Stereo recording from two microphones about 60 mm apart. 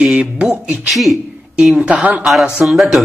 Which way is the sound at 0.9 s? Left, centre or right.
Centre.